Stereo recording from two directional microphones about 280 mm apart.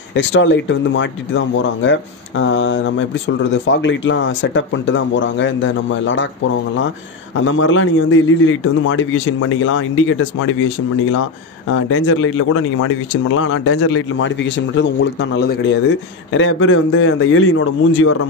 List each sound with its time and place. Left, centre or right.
0.1 s speech: left
7.3 s speech: left
11.7 s speech: left